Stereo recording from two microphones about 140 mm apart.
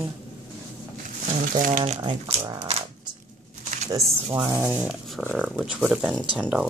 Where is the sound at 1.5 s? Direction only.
70° right (ahead or behind).